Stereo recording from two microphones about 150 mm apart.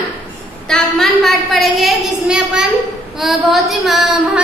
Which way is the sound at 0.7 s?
Centre (ahead or behind).